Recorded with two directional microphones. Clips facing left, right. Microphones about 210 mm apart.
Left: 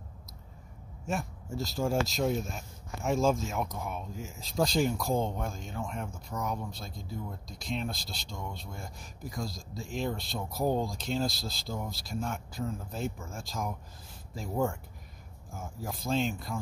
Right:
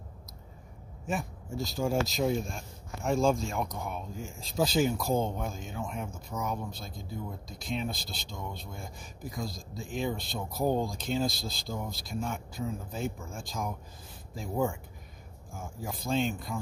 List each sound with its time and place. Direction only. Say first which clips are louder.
1.0 s speech: even; centre (ahead or behind)